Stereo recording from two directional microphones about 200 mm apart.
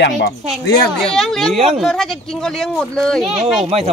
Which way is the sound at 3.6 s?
30° right (ahead or behind).